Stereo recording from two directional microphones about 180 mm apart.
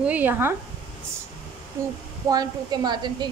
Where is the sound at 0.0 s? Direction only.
10° right (ahead or behind).